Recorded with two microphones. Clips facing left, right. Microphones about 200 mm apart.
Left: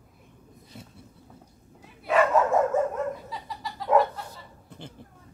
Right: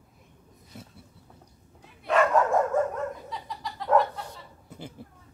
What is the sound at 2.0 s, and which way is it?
Dog, 5° left (ahead or behind).